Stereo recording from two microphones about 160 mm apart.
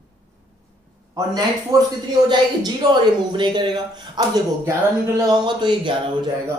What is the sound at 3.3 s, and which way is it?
Speech, 30° right (ahead or behind).